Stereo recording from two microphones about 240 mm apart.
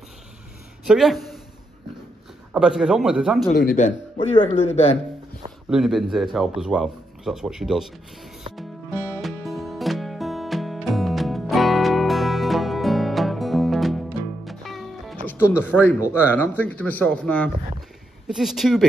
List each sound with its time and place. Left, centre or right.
0.8 s speech: centre
2.5 s speech: centre
3.5 s speech: left
5.7 s speech: centre
8.5 s music: centre
15.7 s a man's voice: centre